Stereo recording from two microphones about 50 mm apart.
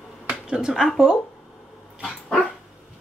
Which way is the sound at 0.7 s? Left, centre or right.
Centre.